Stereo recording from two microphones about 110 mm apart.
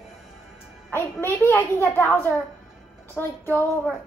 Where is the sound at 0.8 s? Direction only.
20° left (ahead or behind).